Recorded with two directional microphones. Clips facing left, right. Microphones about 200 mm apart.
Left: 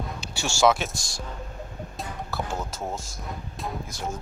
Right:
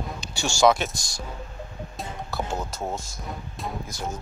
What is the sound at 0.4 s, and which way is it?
Speech, 5° left (ahead or behind).